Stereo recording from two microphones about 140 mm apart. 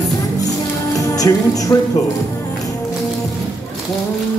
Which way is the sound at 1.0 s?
25° left (ahead or behind).